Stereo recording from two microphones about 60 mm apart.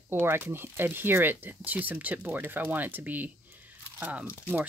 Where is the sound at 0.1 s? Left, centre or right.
Right.